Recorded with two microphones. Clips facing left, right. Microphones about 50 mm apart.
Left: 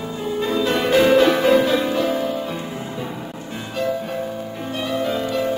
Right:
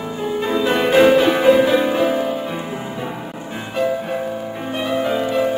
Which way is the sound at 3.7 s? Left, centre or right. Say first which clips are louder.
Right 3 dB; centre.